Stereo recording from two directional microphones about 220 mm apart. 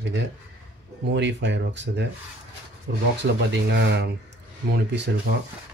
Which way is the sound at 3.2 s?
50° right (ahead or behind).